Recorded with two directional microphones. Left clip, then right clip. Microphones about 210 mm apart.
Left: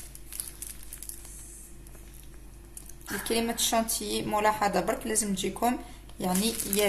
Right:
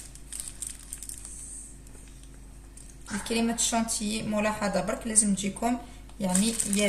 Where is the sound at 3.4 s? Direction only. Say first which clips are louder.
Left 1 dB; 35° left (ahead or behind).